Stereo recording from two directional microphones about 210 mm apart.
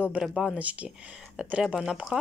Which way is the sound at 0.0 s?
5° right (ahead or behind).